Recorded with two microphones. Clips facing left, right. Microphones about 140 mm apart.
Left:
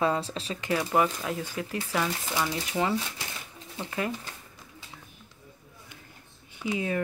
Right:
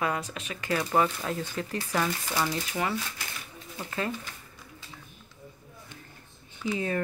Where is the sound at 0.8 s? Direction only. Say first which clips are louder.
Even; 10° left (ahead or behind).